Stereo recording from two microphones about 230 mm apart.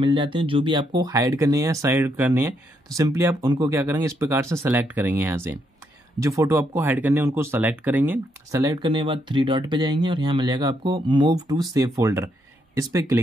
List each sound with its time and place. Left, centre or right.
0.0 s speech: right